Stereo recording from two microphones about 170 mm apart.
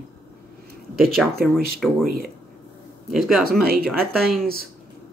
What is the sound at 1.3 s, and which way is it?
Speech, 65° right (ahead or behind).